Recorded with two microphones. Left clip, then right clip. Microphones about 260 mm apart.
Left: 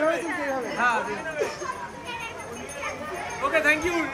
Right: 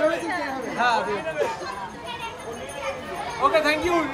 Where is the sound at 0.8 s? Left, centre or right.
Right.